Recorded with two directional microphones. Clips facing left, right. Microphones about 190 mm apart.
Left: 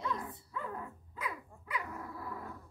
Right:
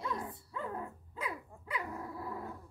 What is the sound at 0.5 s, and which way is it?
Dog, 25° right (ahead or behind).